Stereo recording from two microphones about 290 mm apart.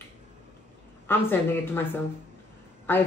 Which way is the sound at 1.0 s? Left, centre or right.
Centre.